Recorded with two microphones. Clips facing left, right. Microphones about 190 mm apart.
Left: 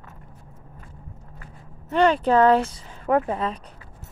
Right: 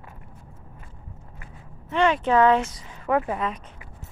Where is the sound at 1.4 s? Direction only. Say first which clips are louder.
Even; 40° left (ahead or behind).